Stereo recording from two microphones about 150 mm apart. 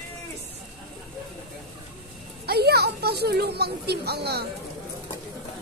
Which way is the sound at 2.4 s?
90° right.